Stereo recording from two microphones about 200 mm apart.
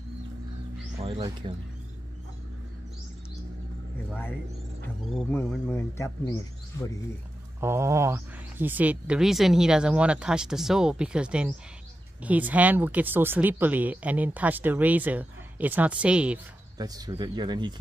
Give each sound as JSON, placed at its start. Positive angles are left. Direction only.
{"t": 0.9, "sound": "music", "side_deg": -30}
{"t": 5.1, "sound": "speech", "side_deg": 5}
{"t": 7.6, "sound": "speech", "side_deg": -15}
{"t": 16.7, "sound": "speech", "side_deg": -20}